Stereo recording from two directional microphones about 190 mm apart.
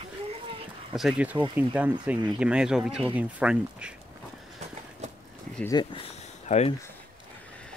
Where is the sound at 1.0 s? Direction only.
5° right (ahead or behind).